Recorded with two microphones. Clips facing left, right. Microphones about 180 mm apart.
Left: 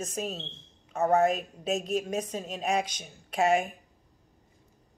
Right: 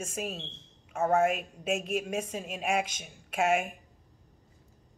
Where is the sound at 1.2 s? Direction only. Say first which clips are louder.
Left 2 dB; 35° left (ahead or behind).